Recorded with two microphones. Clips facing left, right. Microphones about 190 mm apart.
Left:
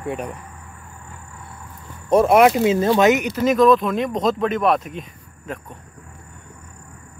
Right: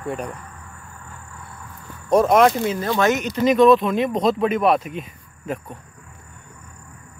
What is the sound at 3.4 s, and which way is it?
Speech, centre (ahead or behind).